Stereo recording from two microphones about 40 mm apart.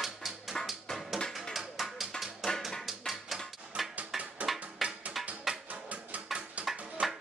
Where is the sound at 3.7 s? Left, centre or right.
Right.